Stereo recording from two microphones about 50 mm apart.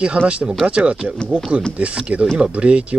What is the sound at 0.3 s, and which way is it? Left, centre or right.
Speech, right.